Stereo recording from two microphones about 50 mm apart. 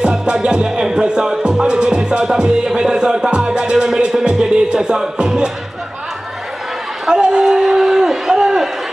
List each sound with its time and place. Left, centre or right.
0.0 s music: centre
7.1 s speech: centre